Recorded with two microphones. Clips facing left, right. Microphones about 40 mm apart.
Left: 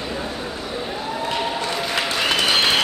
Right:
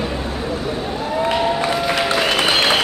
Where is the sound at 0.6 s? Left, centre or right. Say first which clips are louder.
Right 4 dB; centre.